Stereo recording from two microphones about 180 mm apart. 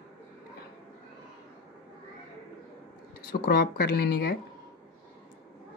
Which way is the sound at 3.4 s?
55° left (ahead or behind).